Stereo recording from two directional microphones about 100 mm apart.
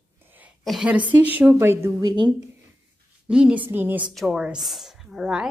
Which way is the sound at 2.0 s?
50° right (ahead or behind).